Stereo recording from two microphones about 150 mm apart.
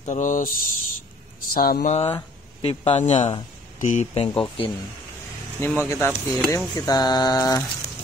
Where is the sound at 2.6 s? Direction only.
45° left (ahead or behind).